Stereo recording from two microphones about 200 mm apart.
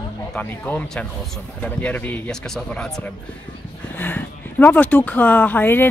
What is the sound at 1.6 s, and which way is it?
Speech, 5° left (ahead or behind).